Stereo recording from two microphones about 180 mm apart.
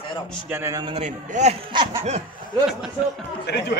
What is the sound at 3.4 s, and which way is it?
Speech, 65° left (ahead or behind).